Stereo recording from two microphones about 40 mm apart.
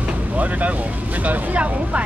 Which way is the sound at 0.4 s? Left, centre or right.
Right.